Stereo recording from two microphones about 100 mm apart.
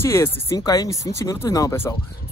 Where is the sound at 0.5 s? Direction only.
40° left (ahead or behind).